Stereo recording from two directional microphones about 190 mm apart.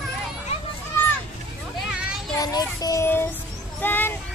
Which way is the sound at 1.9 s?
5° right (ahead or behind).